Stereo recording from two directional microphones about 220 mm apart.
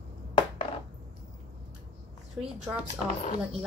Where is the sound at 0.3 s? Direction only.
25° left (ahead or behind).